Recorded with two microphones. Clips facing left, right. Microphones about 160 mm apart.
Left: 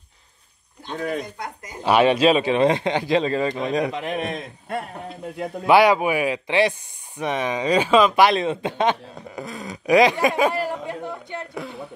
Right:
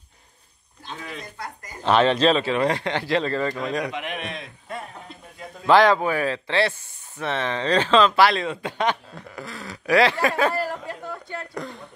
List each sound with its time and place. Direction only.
0.9 s speech: 50° left (ahead or behind)
1.4 s speech: 10° left (ahead or behind)
4.0 s a man's voice: 35° left (ahead or behind)
5.7 s speech: 10° left (ahead or behind)
11.5 s speech: 5° left (ahead or behind)